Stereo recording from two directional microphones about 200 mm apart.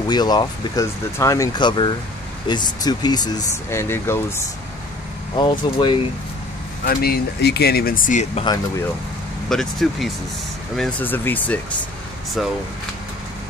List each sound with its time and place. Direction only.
0.1 s speech: 20° left (ahead or behind)
6.8 s speech: 50° left (ahead or behind)
9.5 s speech: centre (ahead or behind)